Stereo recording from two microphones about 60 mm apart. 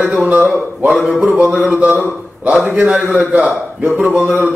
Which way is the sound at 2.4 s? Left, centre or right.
Centre.